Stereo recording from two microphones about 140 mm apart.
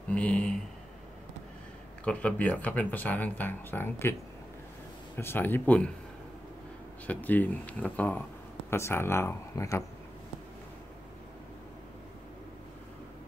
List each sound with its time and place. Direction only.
0.1 s speech: 10° left (ahead or behind)
2.0 s speech: 10° left (ahead or behind)
5.1 s speech: 15° left (ahead or behind)
7.1 s speech: 10° left (ahead or behind)